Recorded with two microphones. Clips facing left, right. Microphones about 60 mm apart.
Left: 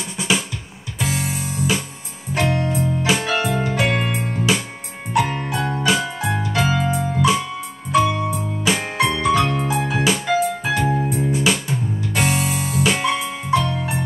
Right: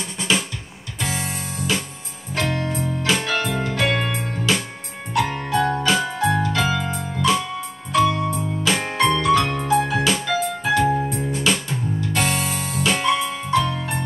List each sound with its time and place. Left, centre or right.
1.0 s music: centre
5.7 s keyboard: centre
7.9 s music: centre
8.6 s keyboard: centre
9.6 s music: centre